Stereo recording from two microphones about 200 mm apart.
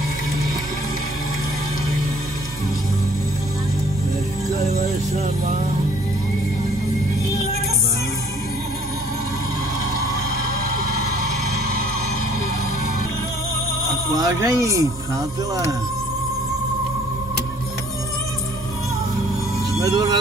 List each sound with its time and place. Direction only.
14.1 s speech: 20° right (ahead or behind)
19.8 s speech: 20° right (ahead or behind)